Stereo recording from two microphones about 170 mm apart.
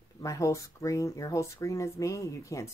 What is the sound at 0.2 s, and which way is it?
Speech, 20° left (ahead or behind).